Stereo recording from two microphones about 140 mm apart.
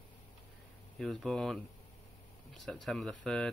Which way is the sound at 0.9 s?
5° left (ahead or behind).